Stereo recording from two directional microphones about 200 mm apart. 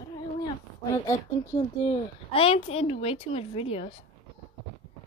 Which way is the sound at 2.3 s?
30° left (ahead or behind).